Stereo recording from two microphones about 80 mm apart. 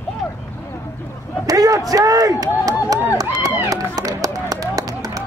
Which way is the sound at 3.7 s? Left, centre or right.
Right.